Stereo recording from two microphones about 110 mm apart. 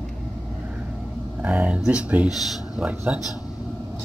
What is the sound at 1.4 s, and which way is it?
Speech, 10° right (ahead or behind).